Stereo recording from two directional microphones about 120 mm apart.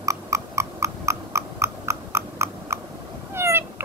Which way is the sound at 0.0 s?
25° right (ahead or behind).